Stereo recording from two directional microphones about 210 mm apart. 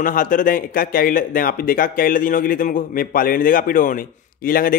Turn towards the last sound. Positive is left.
turn(degrees=45)  # may be behind; listen again after turning